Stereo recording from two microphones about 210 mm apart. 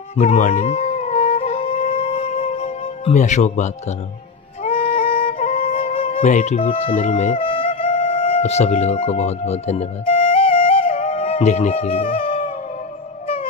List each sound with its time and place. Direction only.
0.1 s music: 30° left (ahead or behind)